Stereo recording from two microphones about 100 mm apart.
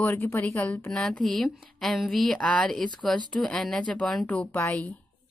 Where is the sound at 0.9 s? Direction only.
5° left (ahead or behind).